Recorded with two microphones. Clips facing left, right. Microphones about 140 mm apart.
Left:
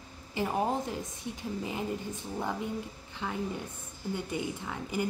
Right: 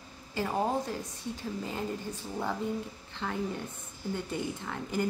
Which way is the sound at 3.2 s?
5° left (ahead or behind).